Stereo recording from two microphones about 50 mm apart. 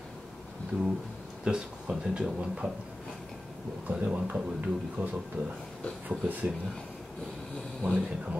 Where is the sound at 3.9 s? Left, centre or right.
Right.